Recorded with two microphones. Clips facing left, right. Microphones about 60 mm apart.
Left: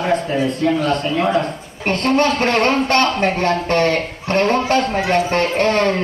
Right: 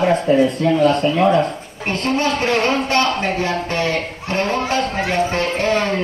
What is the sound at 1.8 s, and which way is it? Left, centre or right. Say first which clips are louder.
A man's voice: left 3 dB; left.